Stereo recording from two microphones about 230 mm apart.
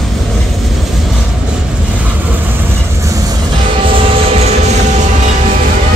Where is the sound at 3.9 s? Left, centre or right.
Right.